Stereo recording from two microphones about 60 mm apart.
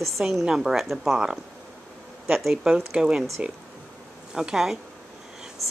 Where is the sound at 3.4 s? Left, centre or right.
Centre.